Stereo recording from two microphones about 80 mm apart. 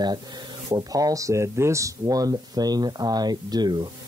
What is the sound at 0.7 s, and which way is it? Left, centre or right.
Speech, right.